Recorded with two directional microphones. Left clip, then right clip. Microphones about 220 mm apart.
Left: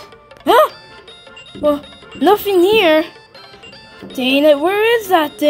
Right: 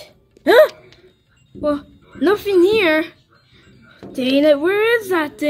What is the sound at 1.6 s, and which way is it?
Speech, 10° left (ahead or behind).